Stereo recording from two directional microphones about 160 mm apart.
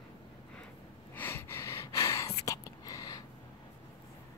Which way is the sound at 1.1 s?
15° left (ahead or behind).